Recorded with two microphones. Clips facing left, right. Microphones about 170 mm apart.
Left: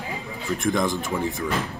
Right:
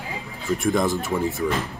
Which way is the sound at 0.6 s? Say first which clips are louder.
Right 1 dB; 5° right (ahead or behind).